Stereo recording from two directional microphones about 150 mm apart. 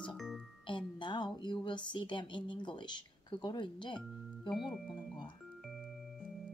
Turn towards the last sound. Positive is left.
turn(degrees=0)  # may be behind; listen again after turning